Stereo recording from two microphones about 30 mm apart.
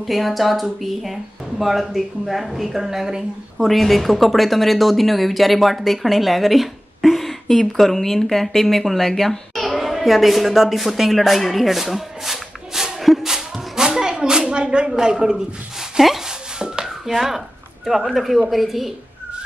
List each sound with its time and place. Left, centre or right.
0.0 s speech: centre
3.6 s a woman's voice: centre
13.3 s a sound: centre
14.9 s a man's voice: right
16.3 s a sound: right
17.1 s speech: centre